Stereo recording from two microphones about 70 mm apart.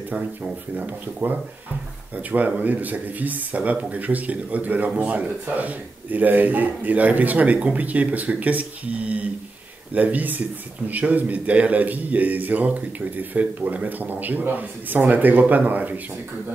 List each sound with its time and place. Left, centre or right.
0.1 s speech: right